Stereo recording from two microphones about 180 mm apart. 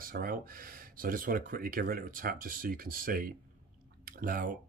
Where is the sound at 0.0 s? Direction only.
55° right (ahead or behind).